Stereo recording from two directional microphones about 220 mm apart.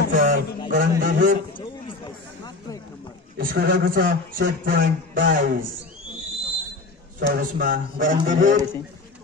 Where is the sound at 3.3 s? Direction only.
40° right (ahead or behind).